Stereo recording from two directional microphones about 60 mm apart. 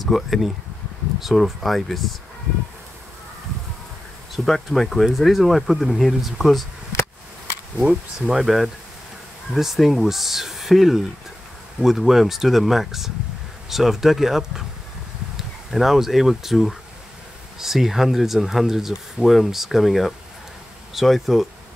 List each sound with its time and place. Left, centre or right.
0.0 s speech: centre
4.5 s speech: centre
7.8 s speech: centre